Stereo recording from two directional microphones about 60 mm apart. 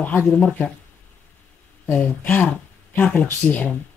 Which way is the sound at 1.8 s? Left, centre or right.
Left.